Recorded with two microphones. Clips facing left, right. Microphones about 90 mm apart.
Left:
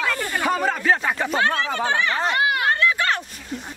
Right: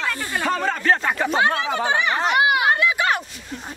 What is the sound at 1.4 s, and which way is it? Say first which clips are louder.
Speech: even; 15° right (ahead or behind).